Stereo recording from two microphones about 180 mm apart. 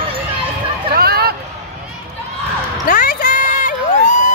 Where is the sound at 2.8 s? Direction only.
50° left (ahead or behind).